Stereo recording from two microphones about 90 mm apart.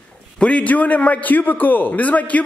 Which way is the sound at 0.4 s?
15° left (ahead or behind).